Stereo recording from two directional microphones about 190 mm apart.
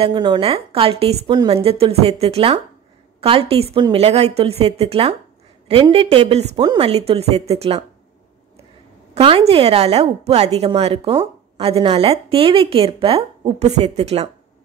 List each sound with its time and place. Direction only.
0.0 s a woman's voice: 25° right (ahead or behind)
9.1 s a woman's voice: 30° right (ahead or behind)